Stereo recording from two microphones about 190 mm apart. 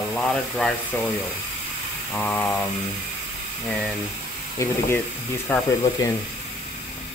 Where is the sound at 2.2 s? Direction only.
5° left (ahead or behind).